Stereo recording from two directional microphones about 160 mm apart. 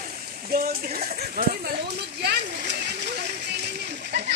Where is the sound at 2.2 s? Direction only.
90° right.